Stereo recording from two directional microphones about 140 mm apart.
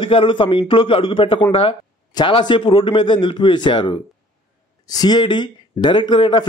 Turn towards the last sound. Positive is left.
turn(degrees=35)  # may be behind; listen again after turning